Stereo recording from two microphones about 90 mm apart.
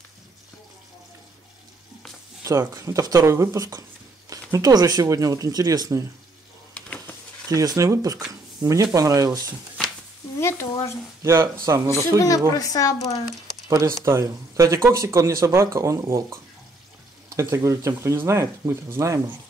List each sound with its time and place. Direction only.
2.7 s speech: 40° right (ahead or behind)
6.7 s a sound: 15° left (ahead or behind)
7.4 s speech: 40° right (ahead or behind)
8.3 s a sound: 40° right (ahead or behind)
8.9 s speech: 40° right (ahead or behind)
10.7 s speech: 35° left (ahead or behind)
11.2 s speech: 30° right (ahead or behind)
11.9 s speech: 35° left (ahead or behind)
13.7 s speech: 35° right (ahead or behind)
17.4 s speech: 35° right (ahead or behind)